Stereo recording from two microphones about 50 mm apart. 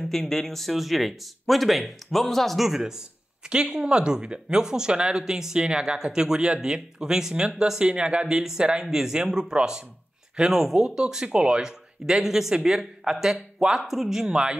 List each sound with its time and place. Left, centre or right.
0.0 s speech: centre
14.2 s speech: centre